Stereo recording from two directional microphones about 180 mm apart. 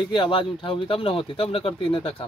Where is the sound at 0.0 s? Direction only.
25° left (ahead or behind).